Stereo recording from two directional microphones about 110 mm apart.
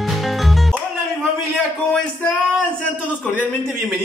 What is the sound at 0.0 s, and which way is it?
Music, centre (ahead or behind).